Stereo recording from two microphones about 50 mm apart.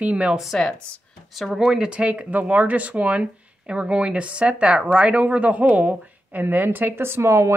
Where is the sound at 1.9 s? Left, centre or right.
Right.